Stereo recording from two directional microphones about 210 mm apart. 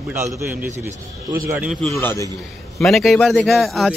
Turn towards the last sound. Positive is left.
turn(degrees=0)  # may be behind; listen again after turning